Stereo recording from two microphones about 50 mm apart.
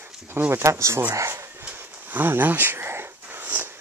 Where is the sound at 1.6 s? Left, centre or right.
Right.